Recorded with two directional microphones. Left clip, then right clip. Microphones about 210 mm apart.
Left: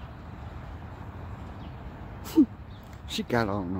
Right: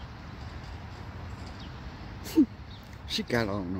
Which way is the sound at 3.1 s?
5° left (ahead or behind).